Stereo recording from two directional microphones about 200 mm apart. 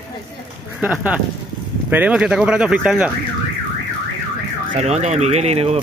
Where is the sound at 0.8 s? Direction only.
5° right (ahead or behind).